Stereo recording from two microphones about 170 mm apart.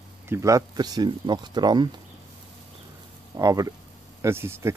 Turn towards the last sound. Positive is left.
turn(degrees=-15)  # may be behind; listen again after turning